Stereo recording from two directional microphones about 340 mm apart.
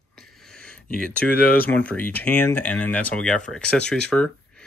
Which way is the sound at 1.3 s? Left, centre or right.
Left.